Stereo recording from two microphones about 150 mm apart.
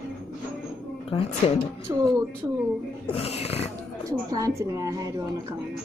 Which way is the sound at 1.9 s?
20° right (ahead or behind).